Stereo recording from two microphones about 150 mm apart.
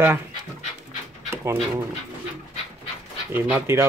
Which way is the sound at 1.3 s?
15° right (ahead or behind).